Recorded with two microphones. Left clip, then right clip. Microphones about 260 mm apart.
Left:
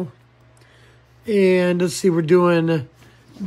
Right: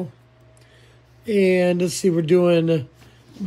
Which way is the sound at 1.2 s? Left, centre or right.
Centre.